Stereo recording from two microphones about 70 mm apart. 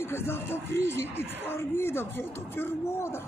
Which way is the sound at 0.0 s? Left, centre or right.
Left.